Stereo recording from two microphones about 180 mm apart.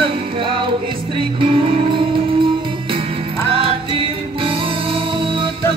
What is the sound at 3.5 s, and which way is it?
Music, 30° right (ahead or behind).